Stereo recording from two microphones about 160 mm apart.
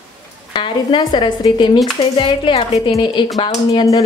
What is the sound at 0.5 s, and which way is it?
A woman's voice, 30° left (ahead or behind).